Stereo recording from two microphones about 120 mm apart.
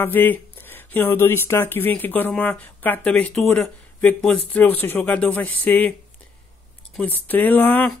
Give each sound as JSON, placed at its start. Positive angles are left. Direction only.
{"t": 0.0, "sound": "speech", "side_deg": 15}
{"t": 7.0, "sound": "speech", "side_deg": 15}